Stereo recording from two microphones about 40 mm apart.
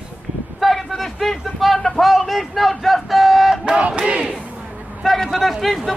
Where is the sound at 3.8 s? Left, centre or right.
Right.